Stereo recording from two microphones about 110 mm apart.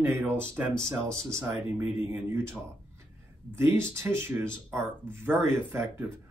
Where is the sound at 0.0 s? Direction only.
20° right (ahead or behind).